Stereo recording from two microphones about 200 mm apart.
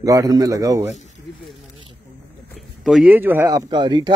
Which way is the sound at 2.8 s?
Centre (ahead or behind).